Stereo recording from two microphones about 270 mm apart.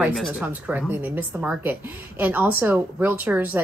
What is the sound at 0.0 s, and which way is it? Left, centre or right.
Speech, centre.